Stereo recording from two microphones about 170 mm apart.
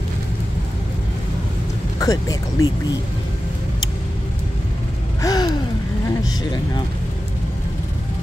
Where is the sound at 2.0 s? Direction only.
20° left (ahead or behind).